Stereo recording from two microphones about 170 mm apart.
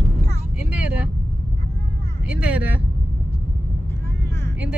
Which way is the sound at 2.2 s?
10° right (ahead or behind).